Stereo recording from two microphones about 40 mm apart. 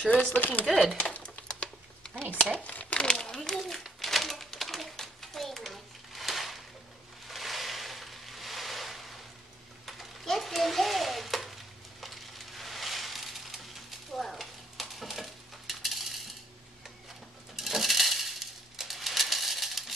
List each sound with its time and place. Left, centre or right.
0.3 s speech: left
1.5 s typing: left
2.6 s crumpling: left
3.0 s a sound: centre
3.3 s a child's voice: centre
4.0 s typewriter: centre
7.2 s a sound: centre
12.0 s crushing: centre
17.6 s coin: centre